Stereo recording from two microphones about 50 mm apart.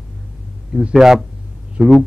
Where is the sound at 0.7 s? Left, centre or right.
Centre.